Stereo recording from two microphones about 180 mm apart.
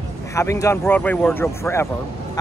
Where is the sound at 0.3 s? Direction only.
15° left (ahead or behind).